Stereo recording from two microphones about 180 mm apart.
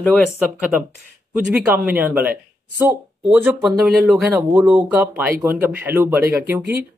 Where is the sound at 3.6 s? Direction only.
Centre (ahead or behind).